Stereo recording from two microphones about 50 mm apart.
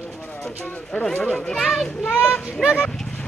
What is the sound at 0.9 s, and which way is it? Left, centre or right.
Speech, left.